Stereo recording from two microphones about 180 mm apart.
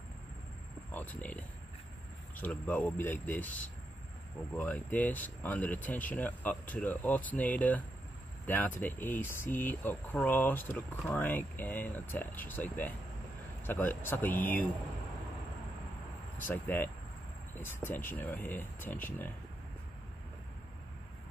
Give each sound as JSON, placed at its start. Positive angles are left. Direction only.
{"t": 0.9, "sound": "speech", "side_deg": 10}
{"t": 16.4, "sound": "speech", "side_deg": 10}